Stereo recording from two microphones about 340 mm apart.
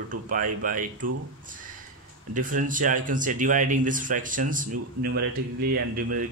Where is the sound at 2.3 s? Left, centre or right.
Right.